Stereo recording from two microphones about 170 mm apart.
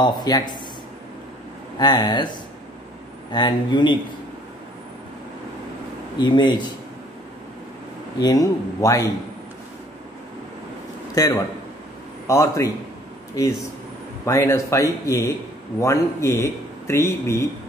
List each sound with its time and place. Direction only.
0.0 s a man's voice: 25° left (ahead or behind)
1.8 s a man's voice: 25° left (ahead or behind)
6.1 s a man's voice: 25° left (ahead or behind)
8.2 s a man's voice: 20° left (ahead or behind)
11.1 s a man's voice: 20° left (ahead or behind)